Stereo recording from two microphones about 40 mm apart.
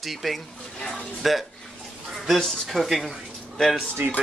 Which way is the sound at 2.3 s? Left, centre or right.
Centre.